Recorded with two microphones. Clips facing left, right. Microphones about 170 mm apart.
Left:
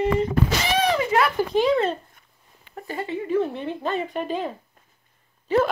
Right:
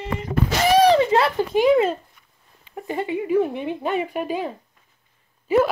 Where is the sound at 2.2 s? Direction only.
50° left (ahead or behind).